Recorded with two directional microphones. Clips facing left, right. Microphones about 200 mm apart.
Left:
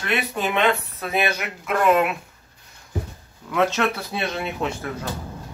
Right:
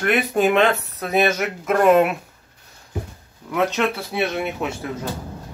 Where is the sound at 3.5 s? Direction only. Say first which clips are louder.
Even; 15° right (ahead or behind).